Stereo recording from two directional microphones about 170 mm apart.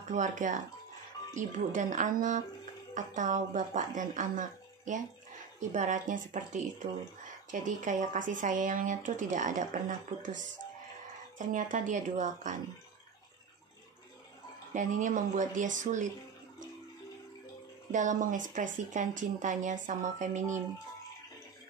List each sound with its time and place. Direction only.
0.1 s speech: 45° right (ahead or behind)
14.7 s speech: 45° right (ahead or behind)
17.9 s speech: 50° right (ahead or behind)